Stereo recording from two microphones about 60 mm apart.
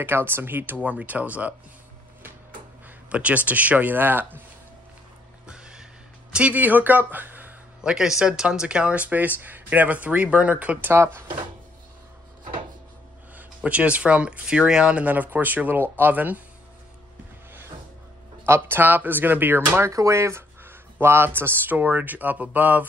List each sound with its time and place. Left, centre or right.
0.0 s speech: right
3.1 s speech: right
5.5 s neigh: centre
6.3 s speech: right
7.8 s speech: centre
13.6 s speech: right
18.4 s speech: right
19.8 s speech: right